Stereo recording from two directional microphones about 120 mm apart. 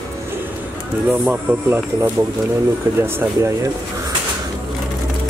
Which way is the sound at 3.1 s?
25° right (ahead or behind).